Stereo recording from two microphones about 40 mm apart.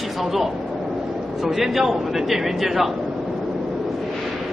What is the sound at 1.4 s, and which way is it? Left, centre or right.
A man's voice, centre.